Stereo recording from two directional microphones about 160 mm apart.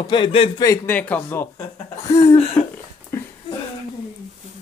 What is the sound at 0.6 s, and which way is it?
Speech, 20° left (ahead or behind).